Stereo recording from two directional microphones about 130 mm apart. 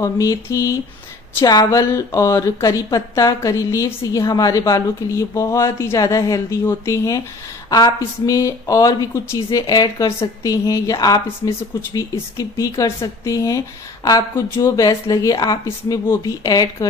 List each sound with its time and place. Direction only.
0.0 s speech: 25° left (ahead or behind)